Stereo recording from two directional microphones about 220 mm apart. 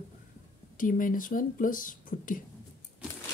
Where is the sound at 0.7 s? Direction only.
40° left (ahead or behind).